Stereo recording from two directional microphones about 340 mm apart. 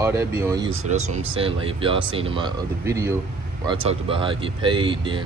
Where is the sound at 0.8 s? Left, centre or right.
Centre.